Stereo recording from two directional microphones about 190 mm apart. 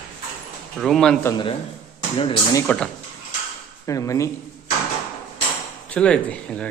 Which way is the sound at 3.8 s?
15° left (ahead or behind).